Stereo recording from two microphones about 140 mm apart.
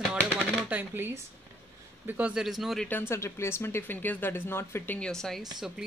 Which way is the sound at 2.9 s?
15° left (ahead or behind).